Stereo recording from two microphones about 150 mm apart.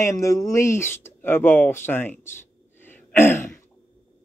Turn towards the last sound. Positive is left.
turn(degrees=15)  # may be behind; listen again after turning